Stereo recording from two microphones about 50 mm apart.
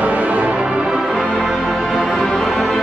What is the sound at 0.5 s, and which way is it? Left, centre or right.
Music, centre.